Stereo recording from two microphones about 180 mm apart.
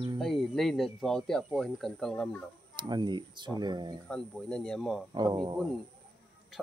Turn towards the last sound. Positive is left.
turn(degrees=-25)  # may be behind; listen again after turning